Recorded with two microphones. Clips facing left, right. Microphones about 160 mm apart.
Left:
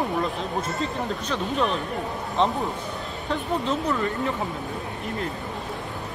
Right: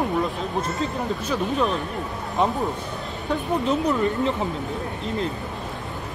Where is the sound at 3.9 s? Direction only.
20° right (ahead or behind).